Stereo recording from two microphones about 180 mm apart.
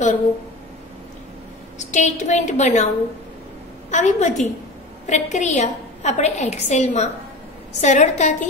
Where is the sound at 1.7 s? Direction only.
45° left (ahead or behind).